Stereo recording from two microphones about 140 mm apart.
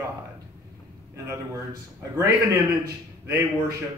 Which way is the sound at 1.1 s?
20° right (ahead or behind).